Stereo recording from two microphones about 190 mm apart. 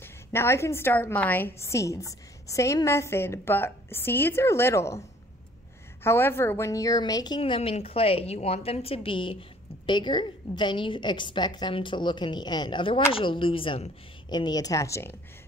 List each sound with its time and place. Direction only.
0.0 s a woman's voice: 15° left (ahead or behind)
6.0 s a woman's voice: 10° left (ahead or behind)